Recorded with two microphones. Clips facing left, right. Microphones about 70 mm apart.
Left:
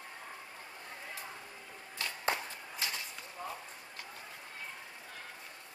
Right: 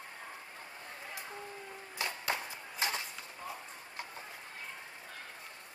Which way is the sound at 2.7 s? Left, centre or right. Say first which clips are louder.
Right 4 dB; right.